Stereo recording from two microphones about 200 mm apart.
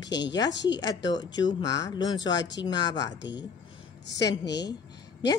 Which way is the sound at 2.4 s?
60° left (ahead or behind).